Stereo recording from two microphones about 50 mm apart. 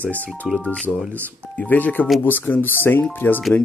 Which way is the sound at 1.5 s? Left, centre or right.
Left.